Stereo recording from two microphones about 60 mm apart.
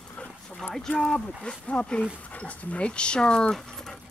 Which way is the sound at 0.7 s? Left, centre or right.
Centre.